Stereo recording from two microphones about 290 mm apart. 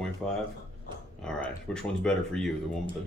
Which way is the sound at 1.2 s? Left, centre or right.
Centre.